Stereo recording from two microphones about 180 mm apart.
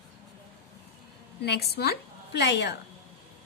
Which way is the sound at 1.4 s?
65° left (ahead or behind).